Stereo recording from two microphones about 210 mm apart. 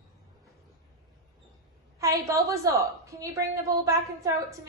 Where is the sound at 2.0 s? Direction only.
15° right (ahead or behind).